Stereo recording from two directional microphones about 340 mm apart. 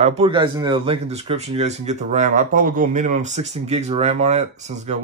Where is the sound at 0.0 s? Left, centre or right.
Centre.